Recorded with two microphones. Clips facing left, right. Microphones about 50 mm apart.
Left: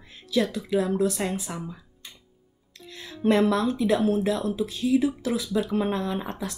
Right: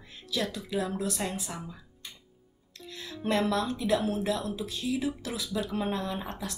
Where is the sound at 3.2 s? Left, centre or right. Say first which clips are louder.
Left 6 dB; left.